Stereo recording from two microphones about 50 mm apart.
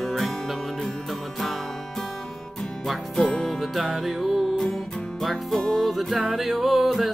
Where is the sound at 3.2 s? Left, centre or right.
Centre.